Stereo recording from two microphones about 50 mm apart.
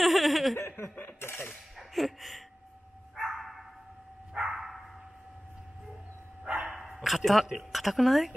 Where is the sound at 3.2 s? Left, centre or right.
Centre.